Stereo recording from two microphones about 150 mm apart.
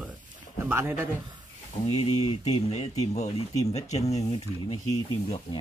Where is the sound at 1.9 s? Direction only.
45° left (ahead or behind).